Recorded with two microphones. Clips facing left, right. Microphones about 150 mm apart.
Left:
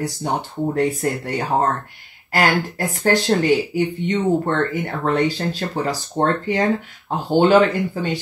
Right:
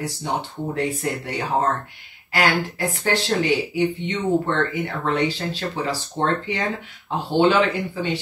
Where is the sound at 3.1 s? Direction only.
45° left (ahead or behind).